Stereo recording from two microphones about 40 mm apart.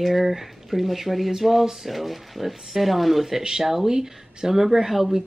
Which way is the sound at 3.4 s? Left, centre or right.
Centre.